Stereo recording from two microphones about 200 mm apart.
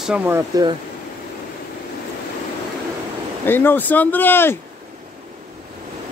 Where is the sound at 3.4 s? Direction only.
10° left (ahead or behind).